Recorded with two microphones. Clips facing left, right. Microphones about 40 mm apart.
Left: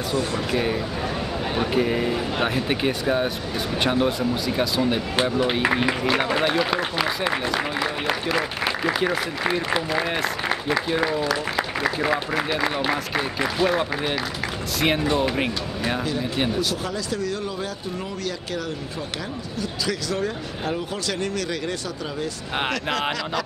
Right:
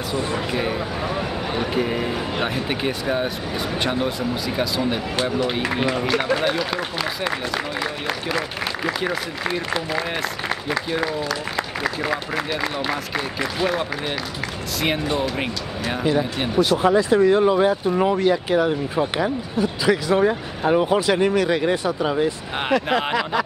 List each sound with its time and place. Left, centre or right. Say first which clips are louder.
0.1 s speech: right 1 dB; right
0.5 s speech: even; centre
5.4 s speech: left 1 dB; centre
16.0 s speech: right 3 dB; right